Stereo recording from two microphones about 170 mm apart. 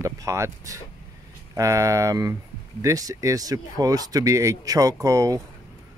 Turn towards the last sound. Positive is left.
turn(degrees=-20)  # may be behind; listen again after turning